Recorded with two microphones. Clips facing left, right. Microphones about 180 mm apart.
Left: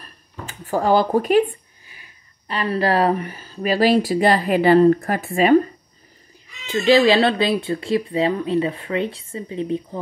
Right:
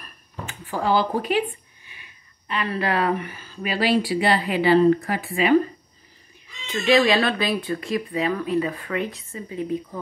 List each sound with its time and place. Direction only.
0.0 s a sound: 40° left (ahead or behind)
1.9 s speech: 35° left (ahead or behind)
6.6 s speech: 30° left (ahead or behind)